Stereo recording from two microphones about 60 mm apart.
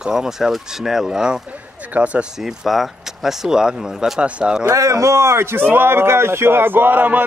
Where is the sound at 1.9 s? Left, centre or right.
Right.